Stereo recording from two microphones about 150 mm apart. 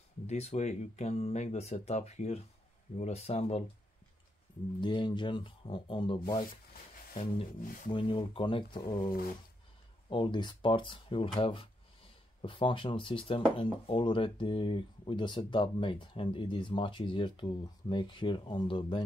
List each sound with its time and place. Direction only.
0.3 s speech: 45° left (ahead or behind)
4.7 s speech: 30° left (ahead or behind)
7.6 s speech: 65° left (ahead or behind)
7.9 s speech: 35° left (ahead or behind)